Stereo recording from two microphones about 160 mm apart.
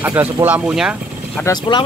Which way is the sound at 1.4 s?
25° left (ahead or behind).